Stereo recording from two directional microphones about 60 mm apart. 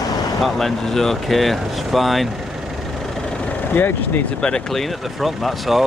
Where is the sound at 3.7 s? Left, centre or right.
Left.